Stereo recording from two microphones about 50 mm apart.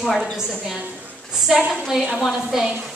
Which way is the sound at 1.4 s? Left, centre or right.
Centre.